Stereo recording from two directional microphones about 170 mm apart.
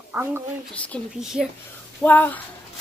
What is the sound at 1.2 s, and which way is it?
Speech, 5° right (ahead or behind).